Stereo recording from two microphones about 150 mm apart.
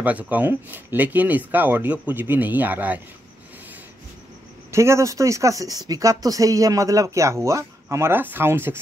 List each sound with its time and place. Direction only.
0.0 s speech: 10° right (ahead or behind)
4.6 s speech: 20° right (ahead or behind)